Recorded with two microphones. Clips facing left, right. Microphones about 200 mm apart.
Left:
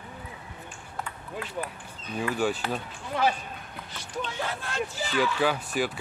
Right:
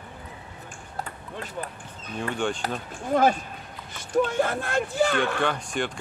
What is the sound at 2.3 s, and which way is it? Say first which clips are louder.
Speech: left 1 dB; 5° left (ahead or behind).